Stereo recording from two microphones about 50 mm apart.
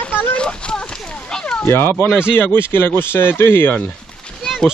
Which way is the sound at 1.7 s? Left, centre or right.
Left.